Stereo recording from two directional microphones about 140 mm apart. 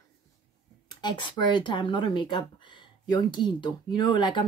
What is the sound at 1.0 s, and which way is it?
Speech, 35° left (ahead or behind).